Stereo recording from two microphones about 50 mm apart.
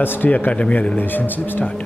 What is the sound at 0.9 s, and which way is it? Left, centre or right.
Speech, left.